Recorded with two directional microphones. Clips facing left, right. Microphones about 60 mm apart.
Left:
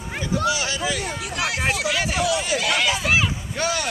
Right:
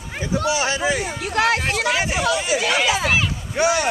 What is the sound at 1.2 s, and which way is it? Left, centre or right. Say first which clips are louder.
Speech: right 12 dB; right.